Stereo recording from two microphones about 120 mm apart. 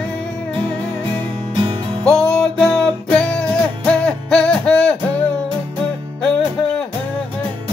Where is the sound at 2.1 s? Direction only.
5° left (ahead or behind).